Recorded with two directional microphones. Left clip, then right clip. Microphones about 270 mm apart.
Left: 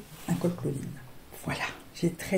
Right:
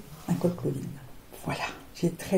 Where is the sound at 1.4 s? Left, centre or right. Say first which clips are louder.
Even; left.